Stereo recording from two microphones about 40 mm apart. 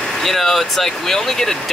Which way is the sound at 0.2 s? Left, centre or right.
Centre.